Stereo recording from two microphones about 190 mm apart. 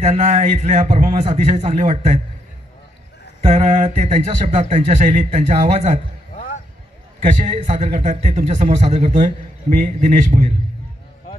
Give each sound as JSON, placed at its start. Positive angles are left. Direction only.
{"t": 0.0, "sound": "a man's voice", "side_deg": -35}
{"t": 3.4, "sound": "a man's voice", "side_deg": -35}
{"t": 6.3, "sound": "a sound", "side_deg": 40}
{"t": 7.2, "sound": "a man's voice", "side_deg": -40}